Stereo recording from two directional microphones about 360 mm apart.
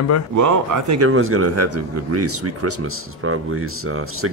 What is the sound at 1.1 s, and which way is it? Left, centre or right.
Speech, right.